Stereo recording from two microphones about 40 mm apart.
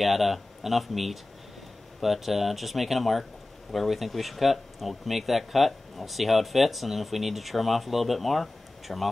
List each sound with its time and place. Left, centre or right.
0.0 s speech: centre